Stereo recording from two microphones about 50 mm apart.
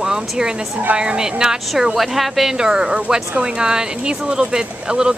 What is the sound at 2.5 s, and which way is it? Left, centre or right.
Speech, centre.